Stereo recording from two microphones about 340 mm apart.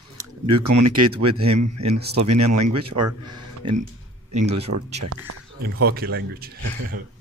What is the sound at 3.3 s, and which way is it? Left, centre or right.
Speech, centre.